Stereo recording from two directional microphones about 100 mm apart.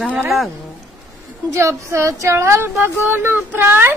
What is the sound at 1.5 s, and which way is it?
A woman's voice, 30° right (ahead or behind).